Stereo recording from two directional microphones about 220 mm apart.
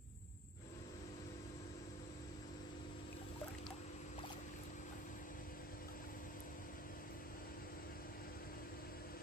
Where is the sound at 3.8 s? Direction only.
30° left (ahead or behind).